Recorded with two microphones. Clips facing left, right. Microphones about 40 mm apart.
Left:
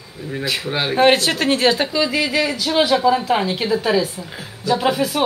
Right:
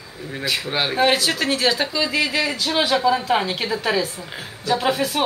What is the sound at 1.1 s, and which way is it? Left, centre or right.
Speech, left.